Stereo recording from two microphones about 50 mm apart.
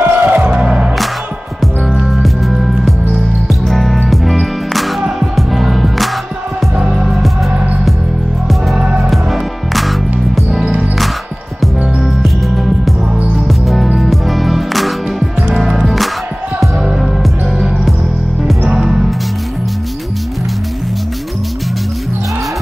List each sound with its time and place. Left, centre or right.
0.0 s music: right
0.6 s music: right
1.6 s music: centre
8.7 s music: centre
12.0 s music: centre